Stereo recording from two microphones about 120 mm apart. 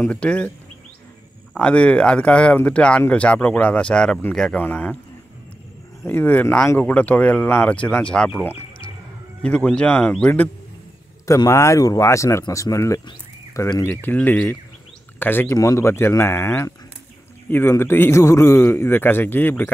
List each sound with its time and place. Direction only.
0.0 s speech: 10° left (ahead or behind)
1.5 s speech: 10° left (ahead or behind)
6.0 s speech: 15° left (ahead or behind)
9.4 s speech: 5° left (ahead or behind)
11.2 s a man's voice: 25° left (ahead or behind)